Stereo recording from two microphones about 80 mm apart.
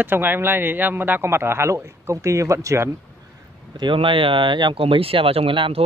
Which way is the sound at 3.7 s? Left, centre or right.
Right.